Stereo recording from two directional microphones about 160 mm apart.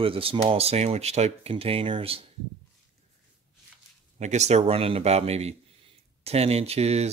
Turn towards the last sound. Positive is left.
turn(degrees=-40)  # may be behind; listen again after turning